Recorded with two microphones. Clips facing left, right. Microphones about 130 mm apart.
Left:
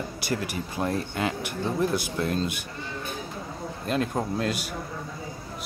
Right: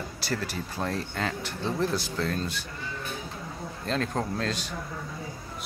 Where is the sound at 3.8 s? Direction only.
10° left (ahead or behind).